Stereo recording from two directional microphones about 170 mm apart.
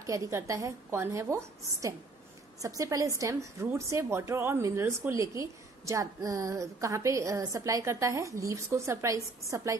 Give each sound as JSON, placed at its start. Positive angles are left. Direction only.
{"t": 0.0, "sound": "a woman's voice", "side_deg": -20}